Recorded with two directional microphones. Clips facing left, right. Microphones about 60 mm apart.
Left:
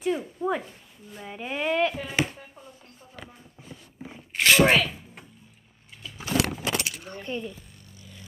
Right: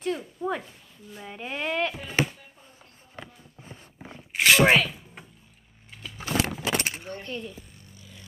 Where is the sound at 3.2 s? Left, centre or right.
Right.